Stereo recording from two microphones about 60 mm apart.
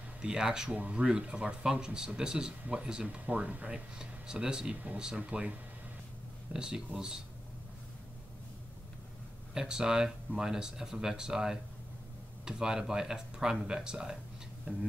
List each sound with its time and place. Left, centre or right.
0.2 s speech: centre
0.7 s speech: right
3.3 s speech: right
4.0 s speech: centre
9.5 s speech: centre